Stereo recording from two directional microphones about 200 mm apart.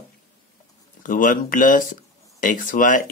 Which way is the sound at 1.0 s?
45° left (ahead or behind).